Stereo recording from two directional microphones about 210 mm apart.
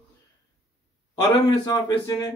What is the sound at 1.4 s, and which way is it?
Speech, 20° left (ahead or behind).